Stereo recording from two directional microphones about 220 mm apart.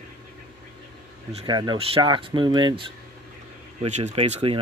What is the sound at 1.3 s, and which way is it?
Speech, 20° right (ahead or behind).